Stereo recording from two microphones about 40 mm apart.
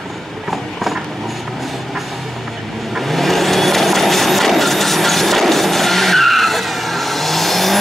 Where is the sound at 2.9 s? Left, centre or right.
Centre.